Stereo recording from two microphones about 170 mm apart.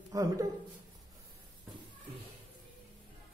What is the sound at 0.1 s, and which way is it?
Speech, 20° right (ahead or behind).